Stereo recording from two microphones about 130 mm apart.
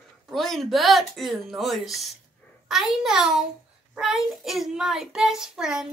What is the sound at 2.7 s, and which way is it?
Child singing, 5° right (ahead or behind).